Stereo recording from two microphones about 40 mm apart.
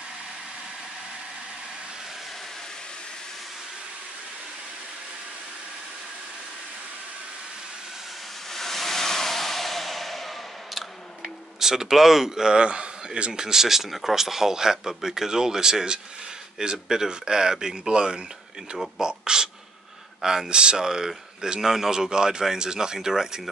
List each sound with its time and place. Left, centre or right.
8.5 s a sound: centre
11.6 s a man's voice: centre
20.4 s a man's voice: right